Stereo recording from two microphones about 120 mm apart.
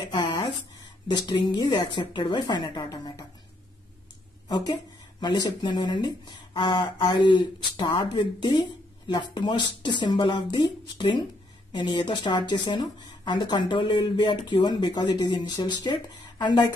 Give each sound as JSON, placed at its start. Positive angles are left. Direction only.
{"t": 0.1, "sound": "a sound", "side_deg": 35}
{"t": 1.0, "sound": "speech", "side_deg": 40}
{"t": 4.5, "sound": "speech", "side_deg": 40}